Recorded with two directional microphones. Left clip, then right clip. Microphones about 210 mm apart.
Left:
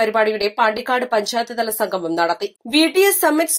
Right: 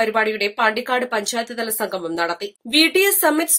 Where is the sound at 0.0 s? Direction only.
Centre (ahead or behind).